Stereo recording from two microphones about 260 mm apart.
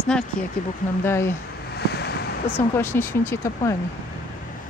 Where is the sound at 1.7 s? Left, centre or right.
Left.